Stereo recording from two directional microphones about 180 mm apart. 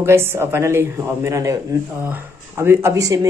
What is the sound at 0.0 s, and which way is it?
Speech, 15° right (ahead or behind).